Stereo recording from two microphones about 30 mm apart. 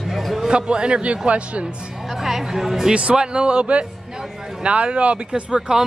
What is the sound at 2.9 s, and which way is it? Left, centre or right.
Speech, right.